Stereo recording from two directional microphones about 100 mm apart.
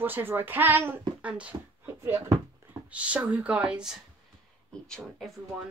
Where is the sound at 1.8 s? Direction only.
25° right (ahead or behind).